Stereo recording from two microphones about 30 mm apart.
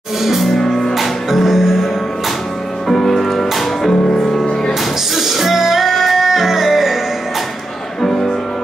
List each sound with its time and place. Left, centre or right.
0.2 s music: centre
0.6 s music: centre
0.9 s music: centre
2.9 s music: centre
3.3 s music: centre
5.1 s music: centre
8.0 s music: centre